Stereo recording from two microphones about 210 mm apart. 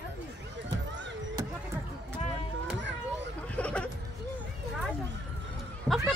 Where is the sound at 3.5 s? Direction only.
5° left (ahead or behind).